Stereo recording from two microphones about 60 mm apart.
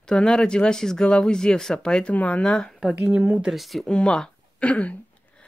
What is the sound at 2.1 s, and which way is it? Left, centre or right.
Speech, left.